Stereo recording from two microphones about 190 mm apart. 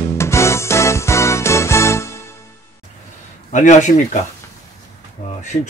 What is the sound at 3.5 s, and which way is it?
Speech, 40° left (ahead or behind).